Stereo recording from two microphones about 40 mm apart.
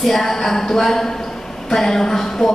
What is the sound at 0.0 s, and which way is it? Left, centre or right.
Speech, centre.